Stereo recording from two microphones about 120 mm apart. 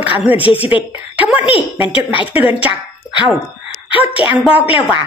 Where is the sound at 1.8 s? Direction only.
50° left (ahead or behind).